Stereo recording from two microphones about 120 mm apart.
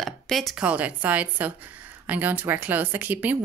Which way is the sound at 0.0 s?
Centre (ahead or behind).